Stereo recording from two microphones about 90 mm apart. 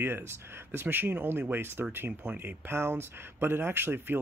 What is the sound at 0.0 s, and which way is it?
Speech, 25° right (ahead or behind).